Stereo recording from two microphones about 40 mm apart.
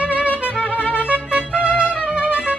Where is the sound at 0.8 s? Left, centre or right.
Left.